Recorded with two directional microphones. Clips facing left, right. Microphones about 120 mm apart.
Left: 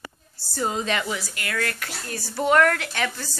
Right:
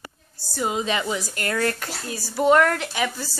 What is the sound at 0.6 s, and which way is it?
Speech, 15° right (ahead or behind).